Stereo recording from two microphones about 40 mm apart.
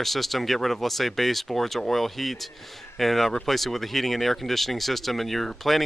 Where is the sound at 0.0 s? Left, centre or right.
Centre.